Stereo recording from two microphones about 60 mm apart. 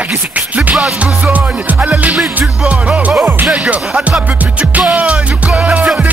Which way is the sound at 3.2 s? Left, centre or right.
Right.